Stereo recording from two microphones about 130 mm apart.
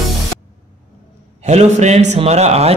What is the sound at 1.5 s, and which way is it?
A man's voice, 55° right (ahead or behind).